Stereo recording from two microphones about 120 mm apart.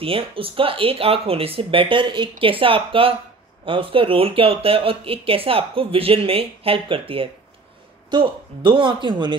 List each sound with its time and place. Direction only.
0.0 s speech: 50° right (ahead or behind)